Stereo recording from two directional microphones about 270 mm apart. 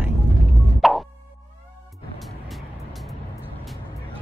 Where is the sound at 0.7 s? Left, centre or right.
Centre.